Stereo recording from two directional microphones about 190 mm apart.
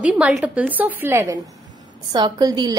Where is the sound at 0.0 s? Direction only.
5° right (ahead or behind).